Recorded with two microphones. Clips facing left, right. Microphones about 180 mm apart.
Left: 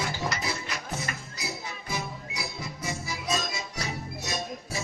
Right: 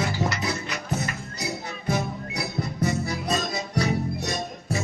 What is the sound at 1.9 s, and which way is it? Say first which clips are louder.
Music: right 9 dB; 60° right (ahead or behind).